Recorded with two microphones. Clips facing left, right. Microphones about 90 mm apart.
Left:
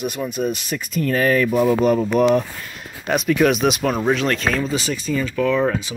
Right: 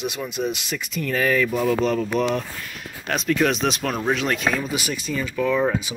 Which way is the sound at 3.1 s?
10° left (ahead or behind).